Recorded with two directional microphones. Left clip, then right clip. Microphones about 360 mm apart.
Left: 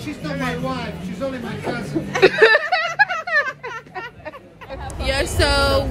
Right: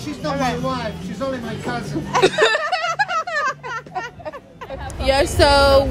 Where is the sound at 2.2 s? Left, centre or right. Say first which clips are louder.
Left 4 dB; centre.